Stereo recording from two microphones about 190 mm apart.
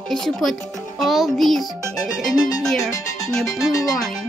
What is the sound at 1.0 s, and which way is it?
Music, centre (ahead or behind).